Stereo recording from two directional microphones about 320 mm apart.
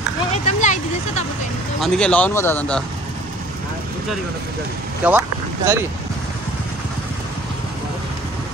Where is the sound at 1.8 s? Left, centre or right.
Centre.